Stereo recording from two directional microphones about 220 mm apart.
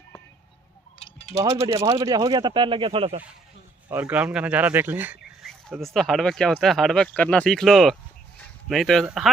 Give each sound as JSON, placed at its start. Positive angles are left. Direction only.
{"t": 0.9, "sound": "wind chime", "side_deg": 25}
{"t": 1.8, "sound": "speech", "side_deg": -15}
{"t": 3.9, "sound": "speech", "side_deg": -5}